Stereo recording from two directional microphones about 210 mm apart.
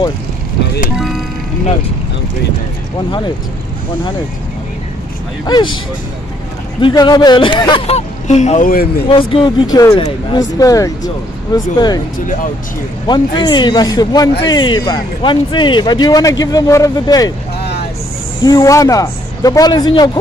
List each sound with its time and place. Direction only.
5.4 s a man's voice: 20° left (ahead or behind)
6.8 s a man's voice: 20° left (ahead or behind); by 9.0 s 45° left (ahead or behind)
9.0 s a man's voice: 25° left (ahead or behind)
13.0 s a man's voice: 20° left (ahead or behind)
18.4 s speech: 15° left (ahead or behind)